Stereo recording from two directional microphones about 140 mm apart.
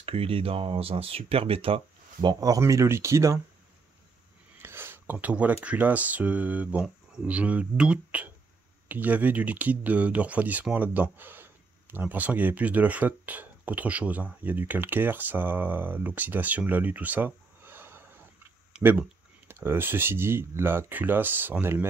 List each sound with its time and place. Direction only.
0.0 s speech: 45° right (ahead or behind)
2.2 s speech: 25° right (ahead or behind)
4.6 s speech: 15° right (ahead or behind)